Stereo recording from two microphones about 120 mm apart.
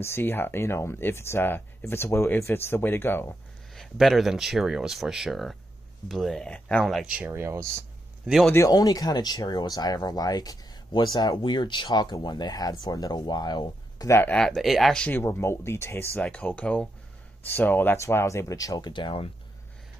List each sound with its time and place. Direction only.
0.0 s speech: 20° left (ahead or behind)
3.7 s speech: centre (ahead or behind)
7.1 s speech: 15° right (ahead or behind)
8.5 s speech: 30° left (ahead or behind)
14.3 s speech: 5° left (ahead or behind)
15.0 s speech: 20° left (ahead or behind)
16.2 s speech: 10° left (ahead or behind); by 19.3 s 45° left (ahead or behind)